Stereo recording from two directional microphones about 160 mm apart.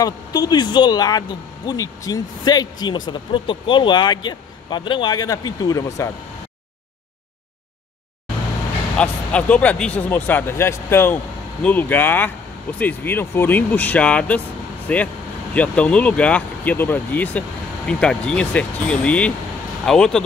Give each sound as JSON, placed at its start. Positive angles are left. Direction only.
{"t": 0.0, "sound": "speech", "side_deg": 25}
{"t": 8.9, "sound": "speech", "side_deg": 5}